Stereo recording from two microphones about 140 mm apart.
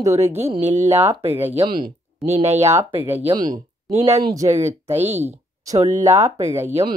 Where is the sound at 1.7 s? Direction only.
90° right.